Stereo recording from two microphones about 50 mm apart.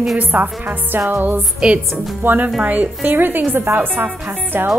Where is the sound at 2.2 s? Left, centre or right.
Right.